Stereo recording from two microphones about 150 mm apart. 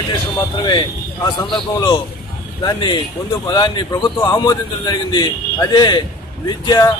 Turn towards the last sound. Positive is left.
turn(degrees=25)  # may be behind; listen again after turning